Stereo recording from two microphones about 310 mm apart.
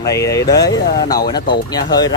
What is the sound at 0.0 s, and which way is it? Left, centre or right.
Speech, centre.